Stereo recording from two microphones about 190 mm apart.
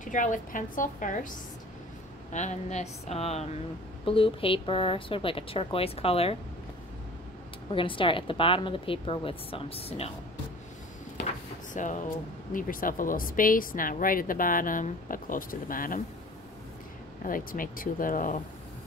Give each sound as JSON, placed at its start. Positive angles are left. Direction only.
{"t": 0.0, "sound": "a woman's voice", "side_deg": 45}
{"t": 2.3, "sound": "a woman's voice", "side_deg": 40}
{"t": 7.7, "sound": "a woman's voice", "side_deg": 25}
{"t": 11.7, "sound": "a woman's voice", "side_deg": 40}
{"t": 17.2, "sound": "a woman's voice", "side_deg": 45}